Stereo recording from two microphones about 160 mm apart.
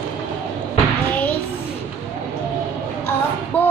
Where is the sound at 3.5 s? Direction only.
10° left (ahead or behind).